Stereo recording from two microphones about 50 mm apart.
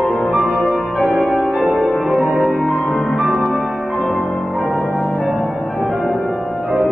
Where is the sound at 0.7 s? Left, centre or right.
Left.